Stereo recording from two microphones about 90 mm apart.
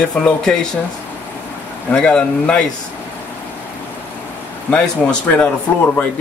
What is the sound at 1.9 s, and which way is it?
Speech, 10° left (ahead or behind).